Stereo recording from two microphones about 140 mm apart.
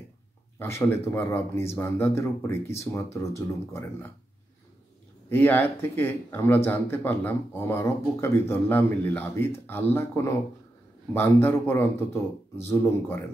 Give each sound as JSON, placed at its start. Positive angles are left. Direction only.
{"t": 0.6, "sound": "speech", "side_deg": 15}
{"t": 5.3, "sound": "speech", "side_deg": 15}